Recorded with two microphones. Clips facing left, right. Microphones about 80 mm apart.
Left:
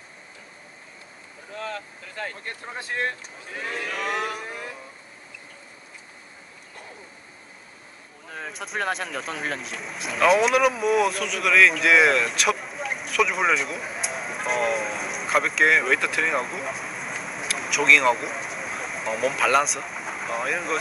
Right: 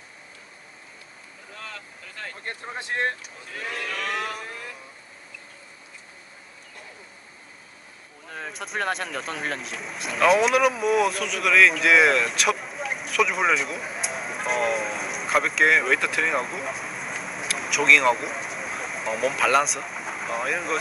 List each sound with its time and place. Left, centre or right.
1.6 s speech: left
2.4 s speech: right
3.8 s music: centre
8.3 s speech: centre